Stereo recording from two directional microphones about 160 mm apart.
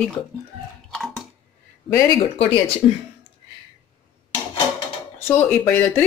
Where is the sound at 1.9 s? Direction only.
20° left (ahead or behind).